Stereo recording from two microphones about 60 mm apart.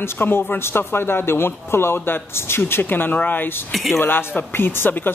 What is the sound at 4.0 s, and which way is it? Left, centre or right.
Speech, left.